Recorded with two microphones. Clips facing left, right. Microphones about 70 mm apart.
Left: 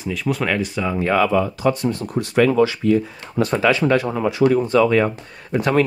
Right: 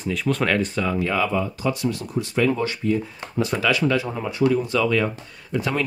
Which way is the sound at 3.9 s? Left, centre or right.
Left.